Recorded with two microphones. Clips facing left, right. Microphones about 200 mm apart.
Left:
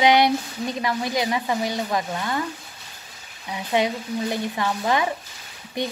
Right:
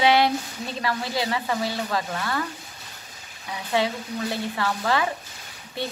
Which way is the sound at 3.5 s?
20° left (ahead or behind).